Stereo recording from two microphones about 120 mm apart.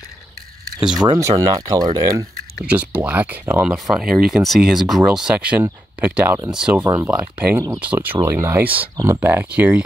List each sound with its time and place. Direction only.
0.7 s speech: 5° right (ahead or behind)
1.0 s speech: 35° right (ahead or behind)
2.6 s speech: 15° right (ahead or behind)
3.6 s speech: 5° right (ahead or behind)